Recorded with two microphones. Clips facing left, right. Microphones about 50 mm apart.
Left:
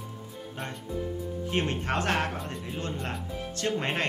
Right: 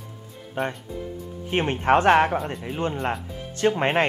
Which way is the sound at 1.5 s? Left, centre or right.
Right.